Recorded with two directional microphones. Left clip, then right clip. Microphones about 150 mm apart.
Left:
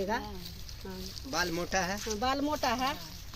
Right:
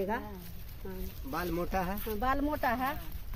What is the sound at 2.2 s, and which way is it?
Speech, 10° left (ahead or behind).